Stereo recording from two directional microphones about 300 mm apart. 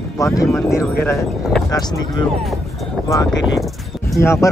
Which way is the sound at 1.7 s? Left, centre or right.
Centre.